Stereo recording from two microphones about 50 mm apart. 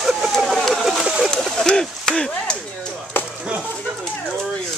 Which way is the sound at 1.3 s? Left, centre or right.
Centre.